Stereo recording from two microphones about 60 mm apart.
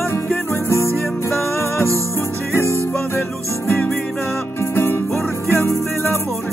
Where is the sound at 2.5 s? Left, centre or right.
Left.